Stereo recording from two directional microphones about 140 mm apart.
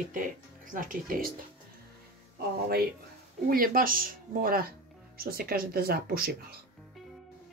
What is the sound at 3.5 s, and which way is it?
Speech, 90° right.